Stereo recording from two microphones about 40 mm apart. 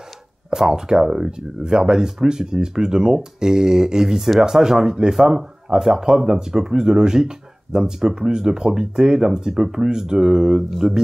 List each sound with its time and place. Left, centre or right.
0.5 s speech: centre
5.1 s speech: centre